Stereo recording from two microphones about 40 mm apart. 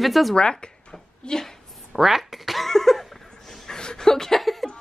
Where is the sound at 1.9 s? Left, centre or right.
Centre.